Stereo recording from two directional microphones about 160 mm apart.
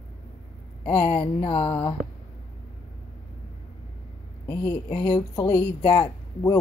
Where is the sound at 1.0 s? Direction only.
35° left (ahead or behind).